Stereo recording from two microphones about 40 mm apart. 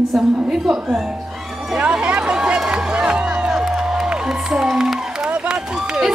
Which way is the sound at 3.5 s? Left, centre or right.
Centre.